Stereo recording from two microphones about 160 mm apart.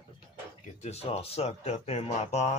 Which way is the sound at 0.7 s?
45° left (ahead or behind).